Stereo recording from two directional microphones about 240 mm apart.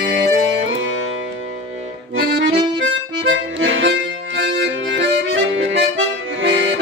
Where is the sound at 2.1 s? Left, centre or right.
Right.